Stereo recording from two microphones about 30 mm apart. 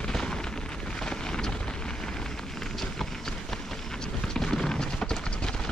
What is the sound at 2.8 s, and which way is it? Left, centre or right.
Run, centre.